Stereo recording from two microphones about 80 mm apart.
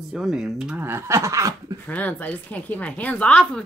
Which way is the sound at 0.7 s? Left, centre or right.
Right.